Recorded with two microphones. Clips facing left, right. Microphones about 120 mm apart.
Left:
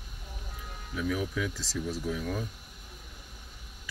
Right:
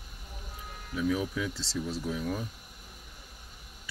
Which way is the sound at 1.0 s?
20° right (ahead or behind).